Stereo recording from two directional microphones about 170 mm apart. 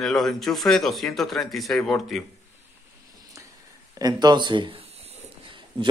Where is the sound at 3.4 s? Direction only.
15° right (ahead or behind).